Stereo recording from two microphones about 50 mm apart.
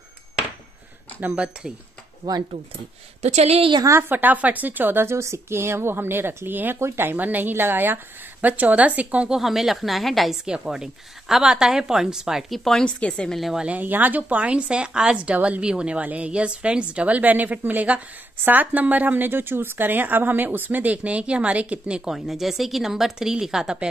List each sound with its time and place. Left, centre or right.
4.1 s a woman's voice: right
5.1 s speech: right
7.2 s a woman's voice: right
9.3 s speech: centre
10.4 s speech: centre
12.4 s speech: centre
12.8 s a woman's voice: left
13.3 s speech: centre
13.7 s a woman's voice: right; by 15.3 s centre
15.3 s a woman's voice: right
15.6 s a woman's voice: centre
22.1 s speech: centre